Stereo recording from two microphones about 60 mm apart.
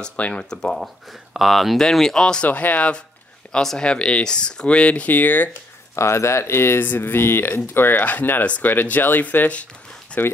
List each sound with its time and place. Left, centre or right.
0.0 s speech: centre
1.3 s speech: centre; by 2.9 s left
3.5 s speech: centre; by 5.5 s left
5.9 s speech: left